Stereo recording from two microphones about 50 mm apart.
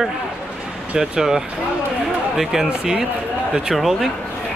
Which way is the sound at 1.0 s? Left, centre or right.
Centre.